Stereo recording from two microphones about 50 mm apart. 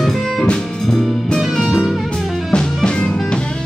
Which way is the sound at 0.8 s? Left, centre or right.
Centre.